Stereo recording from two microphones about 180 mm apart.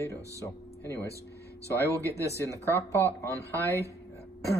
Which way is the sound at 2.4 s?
15° left (ahead or behind).